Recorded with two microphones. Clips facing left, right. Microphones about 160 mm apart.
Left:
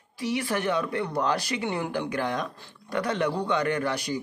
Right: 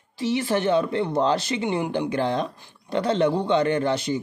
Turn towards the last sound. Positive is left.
turn(degrees=-25)  # may be behind; listen again after turning